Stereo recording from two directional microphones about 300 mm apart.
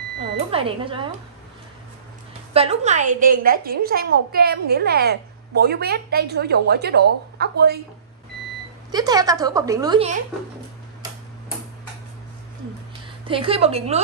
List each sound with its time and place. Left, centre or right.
0.5 s a woman's voice: centre
2.5 s a woman's voice: centre
8.9 s a woman's voice: centre
13.3 s a woman's voice: centre